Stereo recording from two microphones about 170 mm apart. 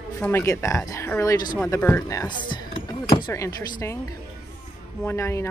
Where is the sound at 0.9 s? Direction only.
15° left (ahead or behind).